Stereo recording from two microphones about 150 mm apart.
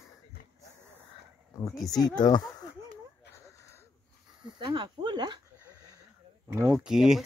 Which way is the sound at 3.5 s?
20° left (ahead or behind).